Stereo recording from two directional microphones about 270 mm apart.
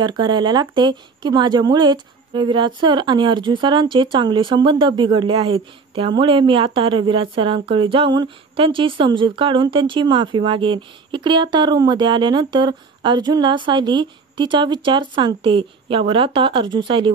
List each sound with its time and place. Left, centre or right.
0.0 s speech: centre